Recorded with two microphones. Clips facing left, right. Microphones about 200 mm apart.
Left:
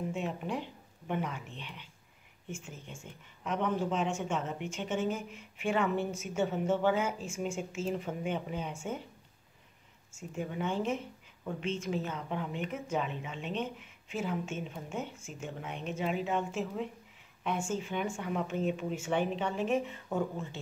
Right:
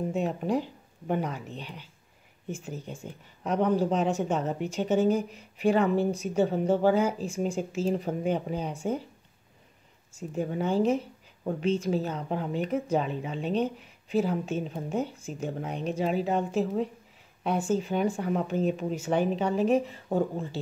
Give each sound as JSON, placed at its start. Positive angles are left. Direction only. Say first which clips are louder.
{"t": 0.1, "sound": "a woman's voice", "louder": "right 8 dB", "side_deg": -40}
{"t": 10.1, "sound": "a woman's voice", "louder": "right 7 dB", "side_deg": -35}